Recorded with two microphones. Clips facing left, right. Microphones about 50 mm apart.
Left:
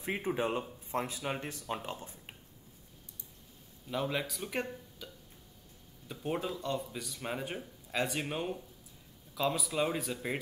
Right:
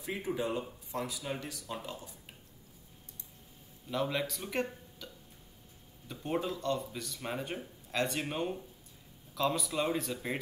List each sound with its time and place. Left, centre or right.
0.0 s speech: left
3.9 s speech: centre